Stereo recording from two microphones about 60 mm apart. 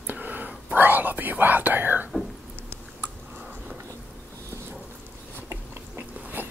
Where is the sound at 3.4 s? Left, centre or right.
Right.